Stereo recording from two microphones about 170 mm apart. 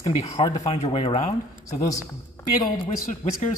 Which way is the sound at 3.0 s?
45° left (ahead or behind).